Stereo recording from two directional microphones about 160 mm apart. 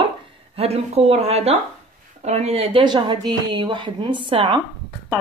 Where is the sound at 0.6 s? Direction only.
40° right (ahead or behind).